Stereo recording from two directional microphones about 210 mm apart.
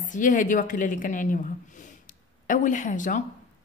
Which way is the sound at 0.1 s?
35° left (ahead or behind).